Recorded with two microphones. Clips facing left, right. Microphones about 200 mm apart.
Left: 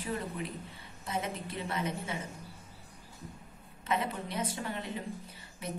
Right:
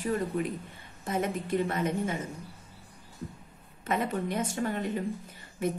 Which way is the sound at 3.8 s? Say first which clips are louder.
Right 4 dB; 50° right (ahead or behind).